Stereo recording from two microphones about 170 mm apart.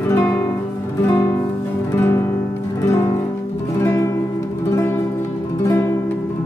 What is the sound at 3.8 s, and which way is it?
Music, 15° left (ahead or behind).